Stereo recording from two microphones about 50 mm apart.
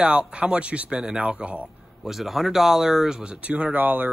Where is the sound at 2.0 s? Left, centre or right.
Centre.